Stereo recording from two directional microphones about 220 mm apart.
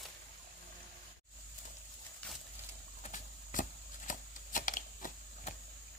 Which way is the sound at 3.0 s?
35° left (ahead or behind).